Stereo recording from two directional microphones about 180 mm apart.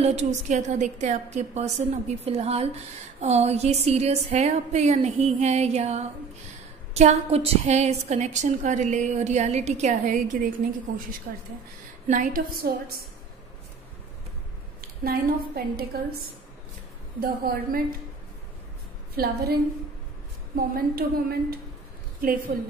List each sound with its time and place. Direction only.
0.0 s a woman's voice: 40° right (ahead or behind); by 12.9 s 55° right (ahead or behind)
14.8 s a woman's voice: 55° right (ahead or behind)
17.2 s a woman's voice: 55° right (ahead or behind)
19.1 s speech: 60° right (ahead or behind)
20.5 s speech: 55° right (ahead or behind)